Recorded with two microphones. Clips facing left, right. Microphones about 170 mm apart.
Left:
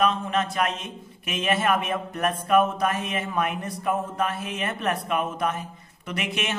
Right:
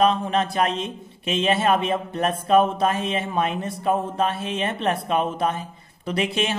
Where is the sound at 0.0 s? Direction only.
30° right (ahead or behind).